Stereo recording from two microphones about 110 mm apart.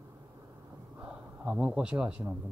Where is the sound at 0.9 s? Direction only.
10° right (ahead or behind).